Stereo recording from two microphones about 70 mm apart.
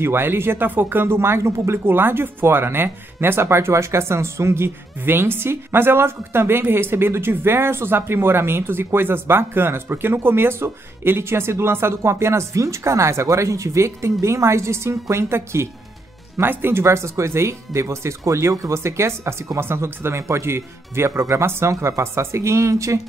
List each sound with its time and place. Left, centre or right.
0.0 s speech: right